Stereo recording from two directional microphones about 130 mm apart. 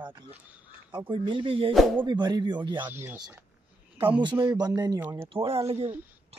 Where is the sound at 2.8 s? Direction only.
15° right (ahead or behind).